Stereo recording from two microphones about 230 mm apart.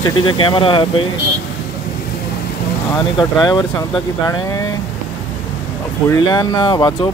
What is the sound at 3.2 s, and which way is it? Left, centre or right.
Speech, centre.